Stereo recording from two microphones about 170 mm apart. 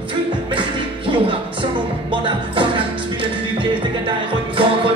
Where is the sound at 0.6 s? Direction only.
30° right (ahead or behind).